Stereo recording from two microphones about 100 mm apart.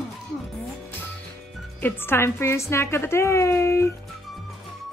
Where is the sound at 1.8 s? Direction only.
20° left (ahead or behind).